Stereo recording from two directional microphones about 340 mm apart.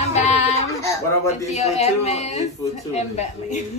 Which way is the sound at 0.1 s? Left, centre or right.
Centre.